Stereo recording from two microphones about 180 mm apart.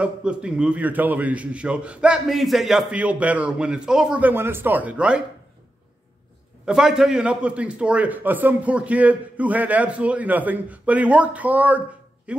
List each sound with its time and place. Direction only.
0.0 s a man's voice: 5° right (ahead or behind)
6.6 s a man's voice: 5° right (ahead or behind)